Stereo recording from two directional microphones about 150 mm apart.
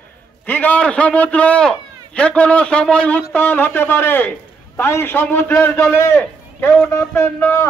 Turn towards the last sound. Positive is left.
turn(degrees=15)  # may be behind; listen again after turning